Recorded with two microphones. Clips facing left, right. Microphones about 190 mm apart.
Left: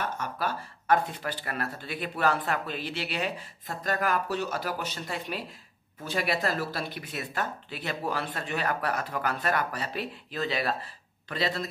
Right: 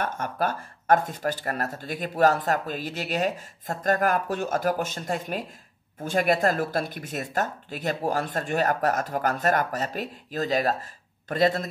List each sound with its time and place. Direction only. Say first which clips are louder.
0.0 s speech: right 4 dB; 50° right (ahead or behind)